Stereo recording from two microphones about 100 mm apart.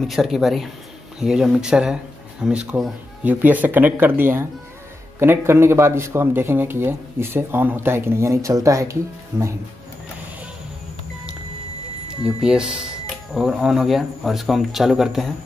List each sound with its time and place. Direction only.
0.0 s speech: centre (ahead or behind); by 9.5 s 25° right (ahead or behind)
12.4 s speech: 5° right (ahead or behind)